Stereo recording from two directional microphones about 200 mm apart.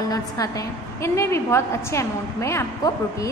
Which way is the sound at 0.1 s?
15° left (ahead or behind).